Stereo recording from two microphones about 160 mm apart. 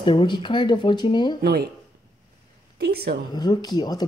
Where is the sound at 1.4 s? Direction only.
80° right.